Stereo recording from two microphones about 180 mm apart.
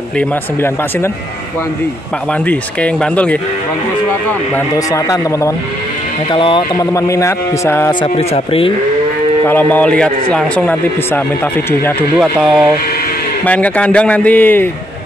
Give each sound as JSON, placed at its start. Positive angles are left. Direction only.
{"t": 0.2, "sound": "a man's voice", "side_deg": 15}
{"t": 2.4, "sound": "a man's voice", "side_deg": 10}
{"t": 4.6, "sound": "a man's voice", "side_deg": 15}
{"t": 6.3, "sound": "a man's voice", "side_deg": 25}
{"t": 8.0, "sound": "speech", "side_deg": 35}
{"t": 9.5, "sound": "a man's voice", "side_deg": 10}